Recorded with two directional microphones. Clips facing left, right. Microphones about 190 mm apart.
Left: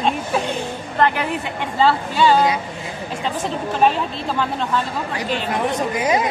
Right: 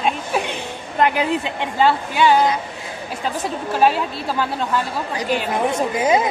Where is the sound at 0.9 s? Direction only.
15° right (ahead or behind).